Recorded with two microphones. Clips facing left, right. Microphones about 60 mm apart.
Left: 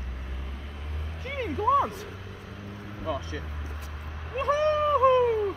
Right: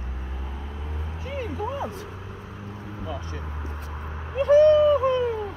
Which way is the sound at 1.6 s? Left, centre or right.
Centre.